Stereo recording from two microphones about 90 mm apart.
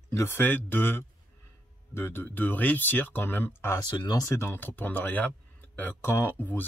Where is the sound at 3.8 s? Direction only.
50° left (ahead or behind).